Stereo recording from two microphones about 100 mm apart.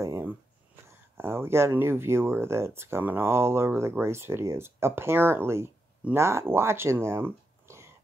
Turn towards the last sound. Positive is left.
turn(degrees=-25)  # may be behind; listen again after turning